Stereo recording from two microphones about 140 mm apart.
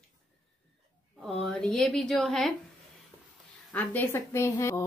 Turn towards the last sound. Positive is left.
turn(degrees=20)  # may be behind; listen again after turning